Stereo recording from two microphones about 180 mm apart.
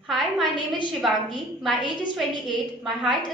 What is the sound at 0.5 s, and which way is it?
Speech, 25° left (ahead or behind).